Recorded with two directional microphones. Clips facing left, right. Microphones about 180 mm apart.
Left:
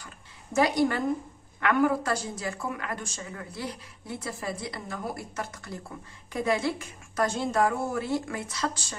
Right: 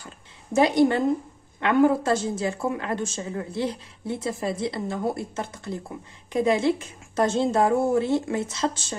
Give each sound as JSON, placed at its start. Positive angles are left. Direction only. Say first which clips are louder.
{"t": 0.6, "sound": "speech", "louder": "right 5 dB", "side_deg": -25}